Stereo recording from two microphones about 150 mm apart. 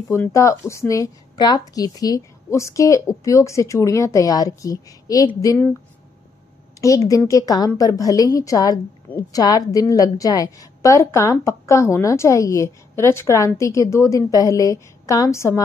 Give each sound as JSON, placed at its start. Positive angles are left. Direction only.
{"t": 0.1, "sound": "a woman's voice", "side_deg": 20}
{"t": 6.8, "sound": "a woman's voice", "side_deg": 20}